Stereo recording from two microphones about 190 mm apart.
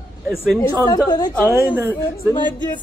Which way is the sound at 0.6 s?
15° left (ahead or behind).